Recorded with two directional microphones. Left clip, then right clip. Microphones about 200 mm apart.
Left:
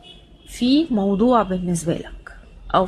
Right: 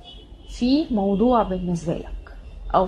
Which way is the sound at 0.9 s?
25° left (ahead or behind).